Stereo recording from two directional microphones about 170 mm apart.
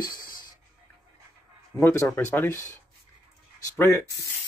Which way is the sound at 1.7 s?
15° left (ahead or behind).